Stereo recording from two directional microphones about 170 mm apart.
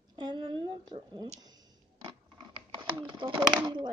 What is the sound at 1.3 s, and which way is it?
Speech, 25° right (ahead or behind).